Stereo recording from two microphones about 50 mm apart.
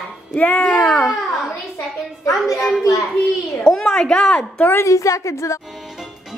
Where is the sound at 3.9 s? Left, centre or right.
Centre.